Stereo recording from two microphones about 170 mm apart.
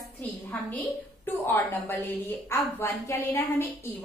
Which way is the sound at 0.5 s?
10° left (ahead or behind).